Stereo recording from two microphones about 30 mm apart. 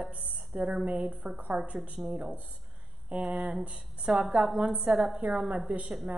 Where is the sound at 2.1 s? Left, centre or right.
Right.